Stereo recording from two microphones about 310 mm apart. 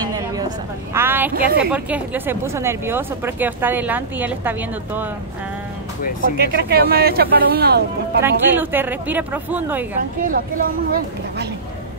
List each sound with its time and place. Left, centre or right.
0.0 s a sound: centre
1.3 s speech: right
1.6 s speech: centre
6.5 s speech: right
8.2 s speech: centre
10.2 s speech: right